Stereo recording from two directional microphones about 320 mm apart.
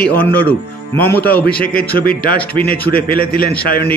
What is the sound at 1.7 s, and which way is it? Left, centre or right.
A man's voice, left.